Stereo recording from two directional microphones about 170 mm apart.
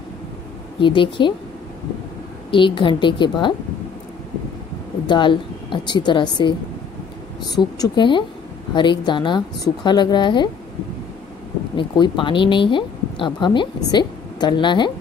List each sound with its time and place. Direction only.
0.7 s speech: 30° left (ahead or behind)
2.5 s speech: 30° left (ahead or behind)
5.0 s speech: 30° left (ahead or behind)
7.5 s speech: 25° left (ahead or behind)
11.7 s a woman's voice: 30° left (ahead or behind)